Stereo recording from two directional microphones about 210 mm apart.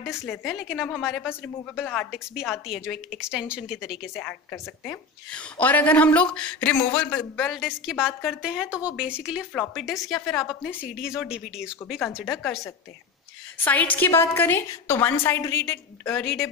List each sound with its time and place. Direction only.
0.3 s a woman's voice: centre (ahead or behind)
13.9 s a woman's voice: 10° left (ahead or behind)